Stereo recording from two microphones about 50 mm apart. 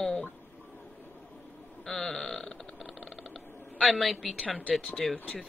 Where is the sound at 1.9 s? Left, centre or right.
Centre.